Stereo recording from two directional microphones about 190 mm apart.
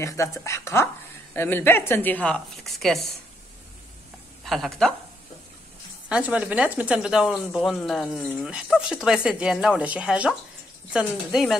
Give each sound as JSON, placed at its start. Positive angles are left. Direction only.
{"t": 0.0, "sound": "a woman's voice", "side_deg": 15}
{"t": 4.5, "sound": "speech", "side_deg": 0}
{"t": 6.0, "sound": "speech", "side_deg": -5}